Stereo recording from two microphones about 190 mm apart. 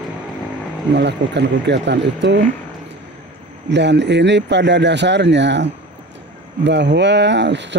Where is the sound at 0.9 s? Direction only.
65° right (ahead or behind).